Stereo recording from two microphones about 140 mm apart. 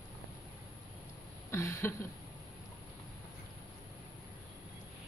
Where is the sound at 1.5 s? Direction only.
20° left (ahead or behind).